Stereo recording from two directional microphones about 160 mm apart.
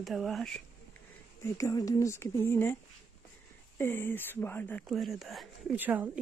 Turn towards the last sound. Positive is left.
turn(degrees=-10)  # may be behind; listen again after turning